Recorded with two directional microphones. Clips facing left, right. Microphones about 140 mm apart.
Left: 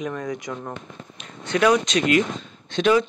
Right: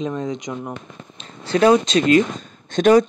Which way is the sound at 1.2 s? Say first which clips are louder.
Right 4 dB; 30° right (ahead or behind).